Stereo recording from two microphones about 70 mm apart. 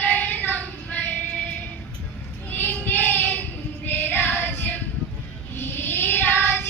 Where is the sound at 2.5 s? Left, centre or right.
Left.